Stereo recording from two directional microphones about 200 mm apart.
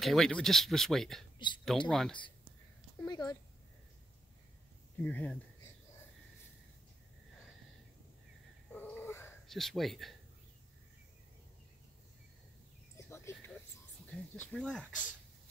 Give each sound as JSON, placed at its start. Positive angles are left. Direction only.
{"t": 0.0, "sound": "speech", "side_deg": 0}
{"t": 1.4, "sound": "speech", "side_deg": 25}
{"t": 1.9, "sound": "speech", "side_deg": 0}
{"t": 3.1, "sound": "speech", "side_deg": 20}
{"t": 5.0, "sound": "speech", "side_deg": 5}
{"t": 8.7, "sound": "a sound", "side_deg": 10}
{"t": 9.5, "sound": "speech", "side_deg": 0}
{"t": 12.9, "sound": "a sound", "side_deg": 15}
{"t": 14.3, "sound": "speech", "side_deg": 5}